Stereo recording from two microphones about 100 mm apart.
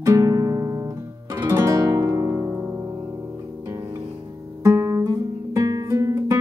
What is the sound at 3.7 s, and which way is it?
Music, 40° right (ahead or behind).